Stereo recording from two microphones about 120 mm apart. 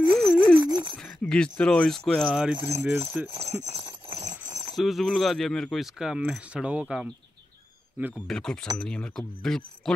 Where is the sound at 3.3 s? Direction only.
65° right (ahead or behind).